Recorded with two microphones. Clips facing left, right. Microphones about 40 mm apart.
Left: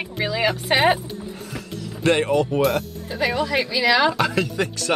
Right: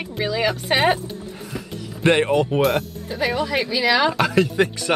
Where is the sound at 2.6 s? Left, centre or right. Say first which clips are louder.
Right 1 dB; centre.